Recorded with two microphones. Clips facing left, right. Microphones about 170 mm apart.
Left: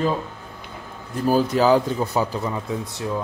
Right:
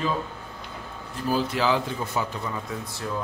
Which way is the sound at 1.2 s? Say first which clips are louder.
Left 7 dB; 40° left (ahead or behind).